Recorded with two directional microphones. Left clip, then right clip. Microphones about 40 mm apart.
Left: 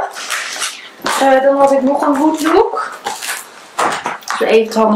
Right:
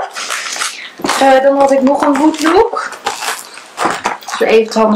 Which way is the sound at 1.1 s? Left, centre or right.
Right.